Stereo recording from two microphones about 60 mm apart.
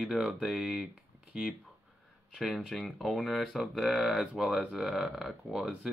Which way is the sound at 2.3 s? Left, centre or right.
Centre.